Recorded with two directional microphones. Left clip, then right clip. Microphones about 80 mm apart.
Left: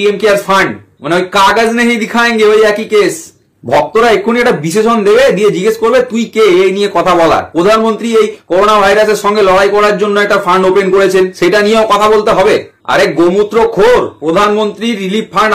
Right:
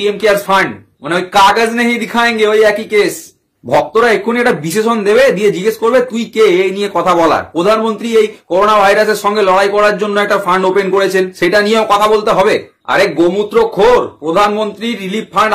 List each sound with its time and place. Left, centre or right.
0.0 s a man's voice: right
3.9 s a man's voice: right
12.8 s a man's voice: centre